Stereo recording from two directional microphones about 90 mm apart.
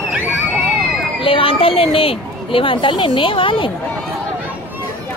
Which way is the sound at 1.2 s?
85° left.